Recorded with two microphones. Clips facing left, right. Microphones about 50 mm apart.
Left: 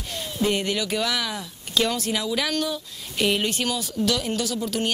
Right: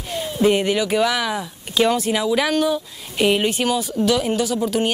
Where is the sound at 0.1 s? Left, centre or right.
Centre.